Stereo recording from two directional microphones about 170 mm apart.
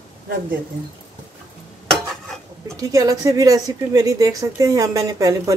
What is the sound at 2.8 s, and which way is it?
Speech, 20° right (ahead or behind).